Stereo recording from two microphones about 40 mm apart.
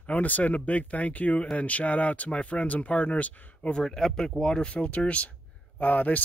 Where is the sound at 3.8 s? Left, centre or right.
Centre.